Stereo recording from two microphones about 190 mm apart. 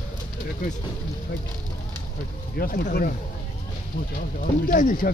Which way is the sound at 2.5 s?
50° left (ahead or behind).